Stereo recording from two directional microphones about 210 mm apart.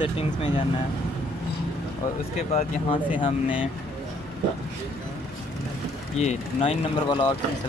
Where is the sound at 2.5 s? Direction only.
30° left (ahead or behind).